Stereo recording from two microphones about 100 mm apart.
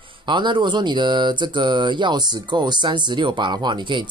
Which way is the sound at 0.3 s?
50° right (ahead or behind).